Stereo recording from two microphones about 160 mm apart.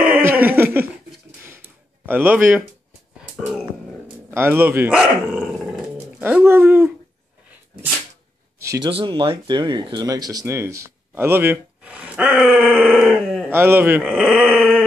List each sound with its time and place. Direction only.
0.0 s a sound: 10° right (ahead or behind)
2.0 s speech: 10° right (ahead or behind)
4.3 s speech: 15° right (ahead or behind)
5.3 s dog: centre (ahead or behind)
5.9 s speech: 10° right (ahead or behind)
8.5 s a sound: 20° right (ahead or behind)
8.8 s speech: 35° right (ahead or behind); by 13.5 s centre (ahead or behind)
13.5 s speech: 15° right (ahead or behind)